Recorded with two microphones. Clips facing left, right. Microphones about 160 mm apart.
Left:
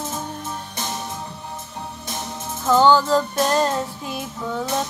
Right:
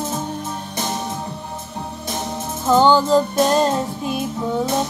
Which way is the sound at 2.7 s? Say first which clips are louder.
Right 2 dB; 15° right (ahead or behind).